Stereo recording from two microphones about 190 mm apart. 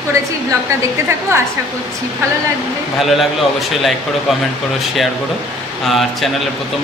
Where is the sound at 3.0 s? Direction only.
Centre (ahead or behind).